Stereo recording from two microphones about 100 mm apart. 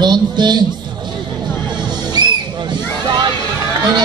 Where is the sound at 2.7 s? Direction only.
50° right (ahead or behind).